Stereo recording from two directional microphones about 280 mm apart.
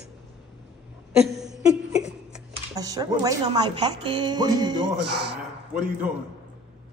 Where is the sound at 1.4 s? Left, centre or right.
Centre.